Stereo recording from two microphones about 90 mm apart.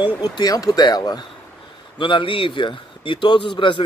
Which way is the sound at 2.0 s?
70° left (ahead or behind).